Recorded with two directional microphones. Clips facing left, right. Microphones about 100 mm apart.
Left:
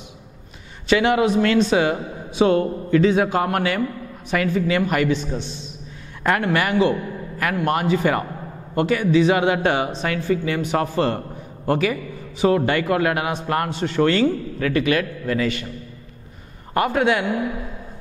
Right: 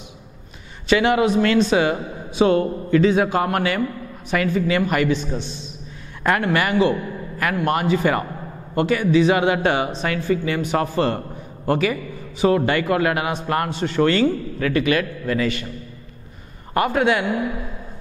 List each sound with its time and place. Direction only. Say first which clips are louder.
0.8 s speech: even; 10° right (ahead or behind)
16.7 s speech: even; 10° right (ahead or behind)